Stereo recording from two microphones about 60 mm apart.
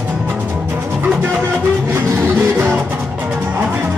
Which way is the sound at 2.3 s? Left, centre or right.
Right.